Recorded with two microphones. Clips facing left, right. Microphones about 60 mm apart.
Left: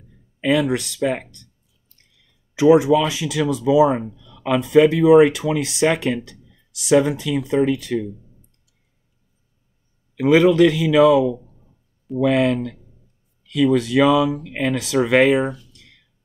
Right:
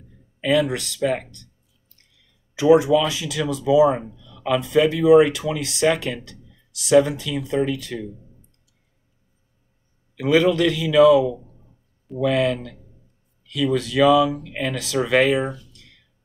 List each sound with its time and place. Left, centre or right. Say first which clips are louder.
0.4 s speech: left 1 dB; centre
2.5 s speech: left 2 dB; left
10.1 s speech: left 4 dB; left